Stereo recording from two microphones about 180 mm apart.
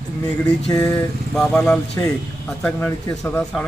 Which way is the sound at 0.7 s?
20° left (ahead or behind).